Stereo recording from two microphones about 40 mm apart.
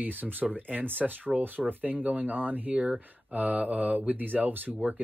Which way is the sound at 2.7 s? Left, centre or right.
Right.